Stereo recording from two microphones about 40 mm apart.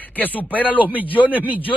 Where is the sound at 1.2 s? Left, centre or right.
Right.